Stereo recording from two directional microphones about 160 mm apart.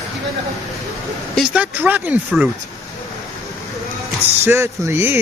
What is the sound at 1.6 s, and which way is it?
Speech, 10° right (ahead or behind).